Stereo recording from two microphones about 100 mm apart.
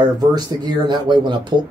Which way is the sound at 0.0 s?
40° right (ahead or behind).